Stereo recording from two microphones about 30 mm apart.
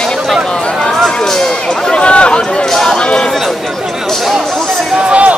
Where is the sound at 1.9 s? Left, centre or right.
Left.